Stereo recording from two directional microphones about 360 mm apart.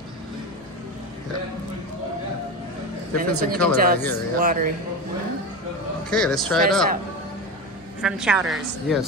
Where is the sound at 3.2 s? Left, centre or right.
Right.